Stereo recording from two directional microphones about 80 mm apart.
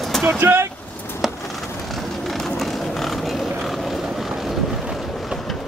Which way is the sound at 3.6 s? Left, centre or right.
Centre.